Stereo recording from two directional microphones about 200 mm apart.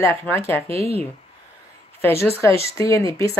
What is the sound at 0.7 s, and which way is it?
Speech, 30° right (ahead or behind).